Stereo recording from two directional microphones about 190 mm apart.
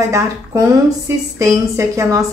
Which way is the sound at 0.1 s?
15° right (ahead or behind).